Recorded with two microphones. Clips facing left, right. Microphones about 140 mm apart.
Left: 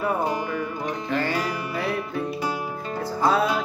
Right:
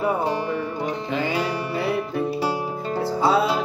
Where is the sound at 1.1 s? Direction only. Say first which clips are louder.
Right 1 dB; 10° right (ahead or behind).